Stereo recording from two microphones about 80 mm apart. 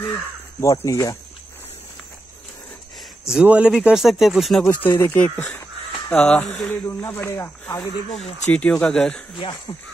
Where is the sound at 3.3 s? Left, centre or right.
Centre.